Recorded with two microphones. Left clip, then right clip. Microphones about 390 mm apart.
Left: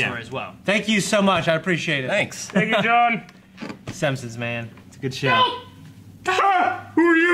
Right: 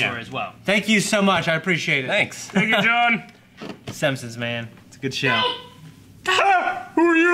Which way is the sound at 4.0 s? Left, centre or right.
Left.